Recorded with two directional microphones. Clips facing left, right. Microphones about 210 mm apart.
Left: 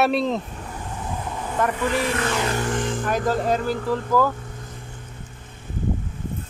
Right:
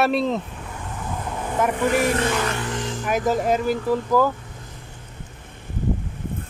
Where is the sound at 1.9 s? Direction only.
45° right (ahead or behind).